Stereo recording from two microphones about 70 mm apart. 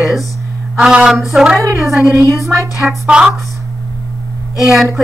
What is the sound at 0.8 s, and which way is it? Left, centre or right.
A woman's voice, centre.